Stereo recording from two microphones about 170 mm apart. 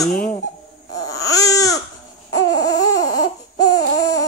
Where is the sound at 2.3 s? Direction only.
20° left (ahead or behind).